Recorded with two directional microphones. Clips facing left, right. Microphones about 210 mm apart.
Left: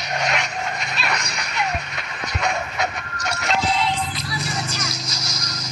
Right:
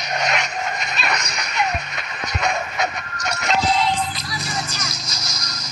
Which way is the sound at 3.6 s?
40° right (ahead or behind).